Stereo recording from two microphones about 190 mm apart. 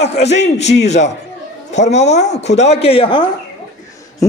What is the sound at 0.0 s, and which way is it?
A man's voice, 35° left (ahead or behind).